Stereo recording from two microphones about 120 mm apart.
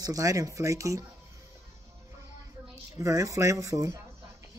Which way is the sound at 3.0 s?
25° right (ahead or behind).